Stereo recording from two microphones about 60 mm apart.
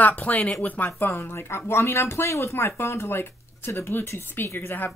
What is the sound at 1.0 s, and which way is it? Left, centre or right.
Speech, left.